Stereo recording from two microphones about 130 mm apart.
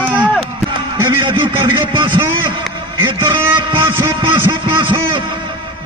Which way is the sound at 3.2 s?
20° right (ahead or behind).